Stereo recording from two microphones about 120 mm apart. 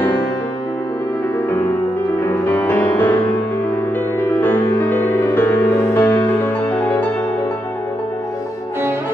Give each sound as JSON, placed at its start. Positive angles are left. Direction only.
{"t": 2.3, "sound": "music", "side_deg": 15}
{"t": 4.2, "sound": "music", "side_deg": 20}